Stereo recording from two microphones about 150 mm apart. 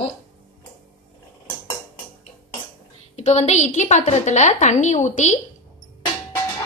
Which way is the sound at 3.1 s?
45° left (ahead or behind).